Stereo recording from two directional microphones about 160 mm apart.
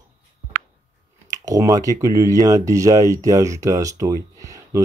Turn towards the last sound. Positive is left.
turn(degrees=-20)  # may be behind; listen again after turning